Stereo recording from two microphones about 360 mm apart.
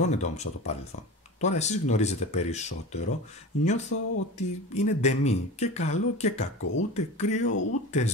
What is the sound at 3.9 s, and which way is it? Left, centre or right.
Speech, left.